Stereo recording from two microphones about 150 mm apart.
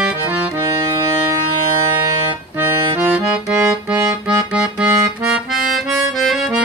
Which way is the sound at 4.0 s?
25° right (ahead or behind).